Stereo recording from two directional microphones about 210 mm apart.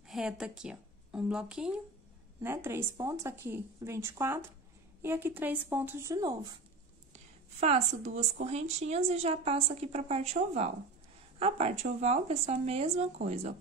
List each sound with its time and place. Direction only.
0.1 s speech: 5° right (ahead or behind)
7.6 s speech: 35° right (ahead or behind)
11.3 s speech: 30° right (ahead or behind)